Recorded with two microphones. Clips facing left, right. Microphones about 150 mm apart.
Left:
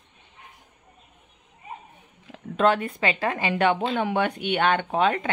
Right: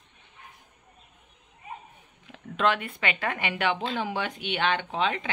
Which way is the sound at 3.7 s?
55° left (ahead or behind).